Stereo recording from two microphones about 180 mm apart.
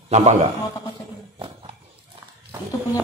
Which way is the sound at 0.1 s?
40° right (ahead or behind).